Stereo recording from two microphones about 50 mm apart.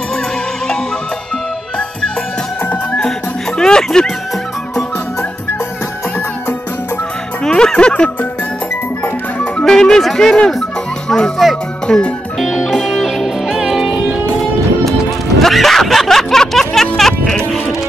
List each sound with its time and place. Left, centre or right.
2.6 s music: left
3.5 s music: centre
7.4 s music: centre
9.6 s music: centre
12.4 s music: centre
13.9 s music: right
15.4 s music: centre